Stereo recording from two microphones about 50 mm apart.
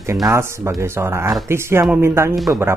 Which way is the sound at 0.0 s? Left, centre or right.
Right.